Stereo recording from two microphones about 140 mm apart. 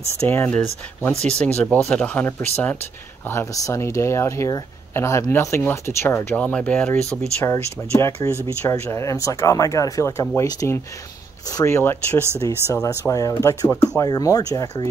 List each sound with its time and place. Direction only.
0.3 s speech: 15° left (ahead or behind)